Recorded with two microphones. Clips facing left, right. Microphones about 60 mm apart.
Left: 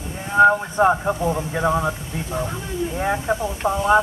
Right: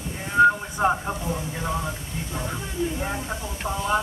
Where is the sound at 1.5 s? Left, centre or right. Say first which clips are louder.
Left 8 dB; left.